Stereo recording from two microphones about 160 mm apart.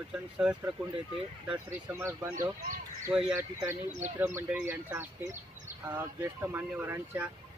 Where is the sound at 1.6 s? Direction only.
15° right (ahead or behind).